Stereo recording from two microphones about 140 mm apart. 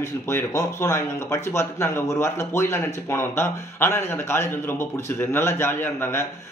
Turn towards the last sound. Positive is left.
turn(degrees=15)  # may be behind; listen again after turning